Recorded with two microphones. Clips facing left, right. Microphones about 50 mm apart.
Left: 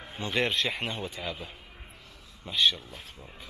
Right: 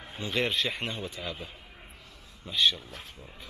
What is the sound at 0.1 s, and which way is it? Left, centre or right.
A man's voice, centre.